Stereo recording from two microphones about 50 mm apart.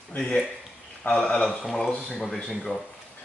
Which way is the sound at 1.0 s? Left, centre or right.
Centre.